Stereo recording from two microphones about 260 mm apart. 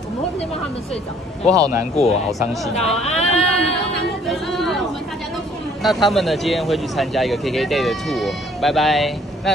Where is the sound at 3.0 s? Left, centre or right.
Left.